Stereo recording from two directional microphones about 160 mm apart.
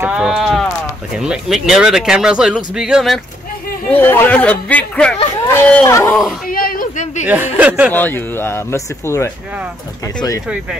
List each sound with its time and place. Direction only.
0.0 s sheep: 5° right (ahead or behind)
1.1 s speech: 5° right (ahead or behind)
3.9 s speech: 10° left (ahead or behind)
6.5 s a sound: 65° left (ahead or behind)
7.5 s speech: 10° right (ahead or behind)
7.9 s speech: 10° left (ahead or behind)